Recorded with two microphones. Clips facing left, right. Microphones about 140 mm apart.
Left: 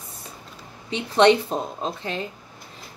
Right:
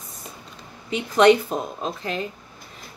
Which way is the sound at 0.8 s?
30° left (ahead or behind).